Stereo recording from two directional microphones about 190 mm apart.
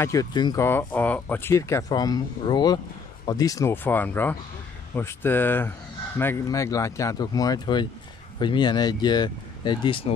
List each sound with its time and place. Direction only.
0.0 s speech: 20° left (ahead or behind)